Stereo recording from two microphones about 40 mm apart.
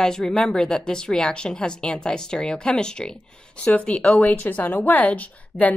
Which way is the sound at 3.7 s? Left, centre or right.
Left.